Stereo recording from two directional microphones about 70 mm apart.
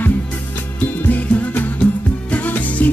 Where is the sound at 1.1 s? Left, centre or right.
Left.